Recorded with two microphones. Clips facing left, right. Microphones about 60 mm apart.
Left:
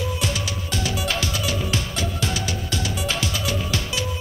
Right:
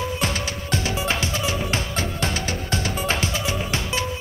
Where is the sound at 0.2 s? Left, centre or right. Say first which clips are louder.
Right 1 dB; right.